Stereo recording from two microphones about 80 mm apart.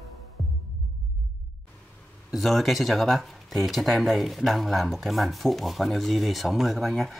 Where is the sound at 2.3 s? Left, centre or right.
Centre.